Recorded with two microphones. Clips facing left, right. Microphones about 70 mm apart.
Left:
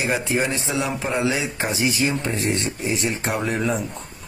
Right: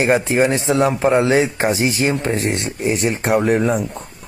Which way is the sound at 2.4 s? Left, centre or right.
Right.